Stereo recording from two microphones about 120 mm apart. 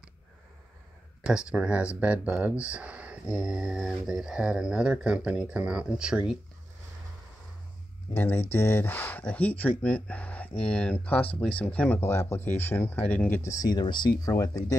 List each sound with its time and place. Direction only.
1.2 s speech: 10° right (ahead or behind)
8.1 s speech: 15° left (ahead or behind)
12.0 s speech: 20° left (ahead or behind)
13.4 s speech: 30° left (ahead or behind)